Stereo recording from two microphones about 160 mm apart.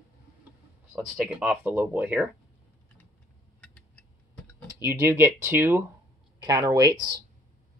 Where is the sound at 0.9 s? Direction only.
5° right (ahead or behind).